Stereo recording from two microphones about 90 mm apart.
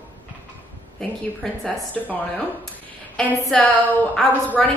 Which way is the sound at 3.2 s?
5° left (ahead or behind).